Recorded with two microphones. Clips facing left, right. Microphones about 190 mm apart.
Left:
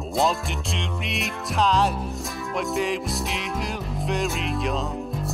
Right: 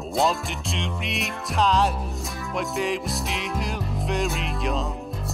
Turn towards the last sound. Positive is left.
turn(degrees=0)  # may be behind; listen again after turning